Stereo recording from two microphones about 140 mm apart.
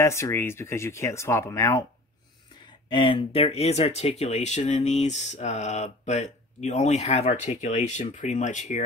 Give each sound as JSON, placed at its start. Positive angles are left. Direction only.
{"t": 0.0, "sound": "speech", "side_deg": 20}
{"t": 2.9, "sound": "speech", "side_deg": 35}